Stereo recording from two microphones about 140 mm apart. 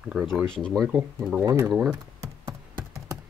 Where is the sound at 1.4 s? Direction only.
20° right (ahead or behind).